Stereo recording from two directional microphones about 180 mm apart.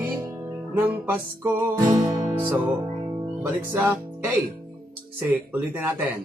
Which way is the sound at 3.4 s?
10° right (ahead or behind).